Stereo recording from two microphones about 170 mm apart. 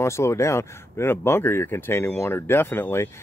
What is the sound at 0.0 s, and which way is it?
Speech, 15° left (ahead or behind).